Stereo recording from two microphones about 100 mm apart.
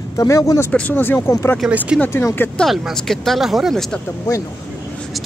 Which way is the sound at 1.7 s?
10° right (ahead or behind).